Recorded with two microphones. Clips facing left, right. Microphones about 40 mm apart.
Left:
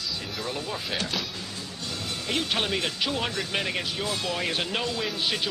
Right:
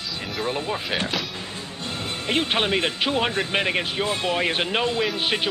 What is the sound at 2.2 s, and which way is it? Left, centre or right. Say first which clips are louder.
Speech: right 5 dB; right.